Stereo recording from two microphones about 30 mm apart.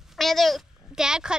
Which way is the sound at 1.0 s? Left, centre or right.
Right.